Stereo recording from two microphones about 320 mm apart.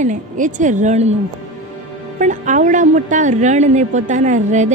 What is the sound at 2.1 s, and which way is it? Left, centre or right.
A woman's voice, right.